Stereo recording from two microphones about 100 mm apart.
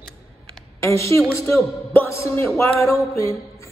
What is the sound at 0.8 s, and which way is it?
Speech, 30° left (ahead or behind).